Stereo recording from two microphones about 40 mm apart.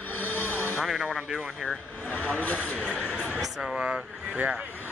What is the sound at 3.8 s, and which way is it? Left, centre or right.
Speech, right.